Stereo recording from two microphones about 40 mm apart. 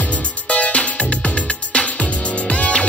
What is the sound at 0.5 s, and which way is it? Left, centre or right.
Music, left.